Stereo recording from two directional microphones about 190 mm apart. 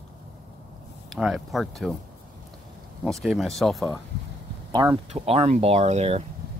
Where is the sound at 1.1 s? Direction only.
Centre (ahead or behind).